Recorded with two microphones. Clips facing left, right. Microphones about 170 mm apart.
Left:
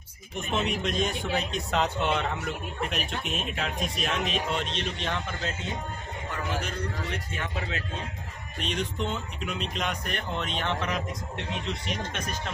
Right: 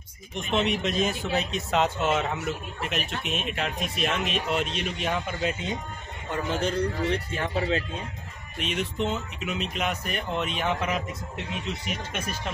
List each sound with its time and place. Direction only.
0.5 s speech: centre (ahead or behind)
6.6 s a man's voice: 30° right (ahead or behind)
8.5 s speech: 5° right (ahead or behind)